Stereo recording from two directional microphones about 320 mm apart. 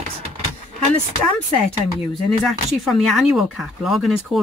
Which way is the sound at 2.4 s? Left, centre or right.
Centre.